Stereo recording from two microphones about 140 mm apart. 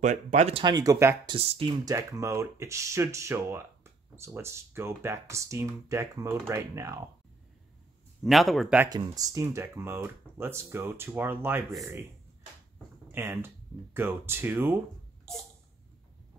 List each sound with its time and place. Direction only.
0.0 s speech: 60° right (ahead or behind)
0.7 s speech: 25° right (ahead or behind)
1.2 s speech: 40° right (ahead or behind)
1.9 s speech: 20° right (ahead or behind)
8.2 s speech: centre (ahead or behind)
8.9 s speech: 30° right (ahead or behind)
12.7 s a sound: 15° right (ahead or behind)
13.9 s speech: 15° right (ahead or behind)